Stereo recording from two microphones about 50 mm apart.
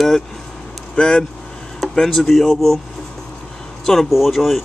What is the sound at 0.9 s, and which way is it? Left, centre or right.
Speech, centre.